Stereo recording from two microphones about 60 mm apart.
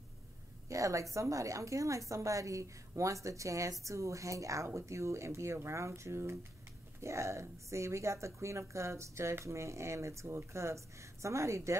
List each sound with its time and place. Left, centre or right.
0.7 s a woman's voice: right